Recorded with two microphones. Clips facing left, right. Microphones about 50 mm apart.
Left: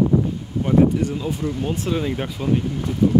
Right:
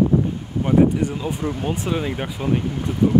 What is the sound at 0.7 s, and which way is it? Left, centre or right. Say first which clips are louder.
Speech: even; centre.